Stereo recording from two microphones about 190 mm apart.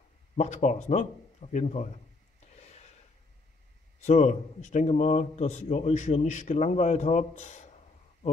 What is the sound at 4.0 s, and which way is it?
Speech, 35° left (ahead or behind).